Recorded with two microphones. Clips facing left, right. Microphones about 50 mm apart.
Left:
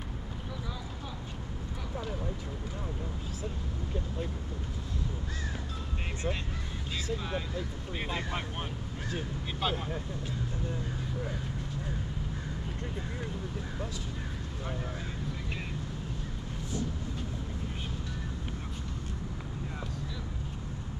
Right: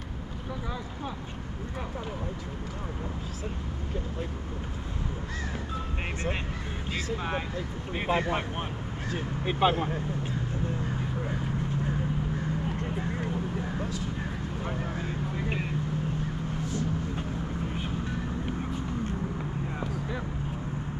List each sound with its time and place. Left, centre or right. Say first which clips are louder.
6.9 s speech: right 3 dB; right